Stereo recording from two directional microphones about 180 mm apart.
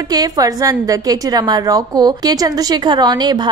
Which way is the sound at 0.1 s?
20° right (ahead or behind).